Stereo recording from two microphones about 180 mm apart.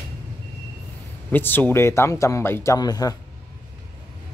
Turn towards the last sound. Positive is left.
turn(degrees=20)  # may be behind; listen again after turning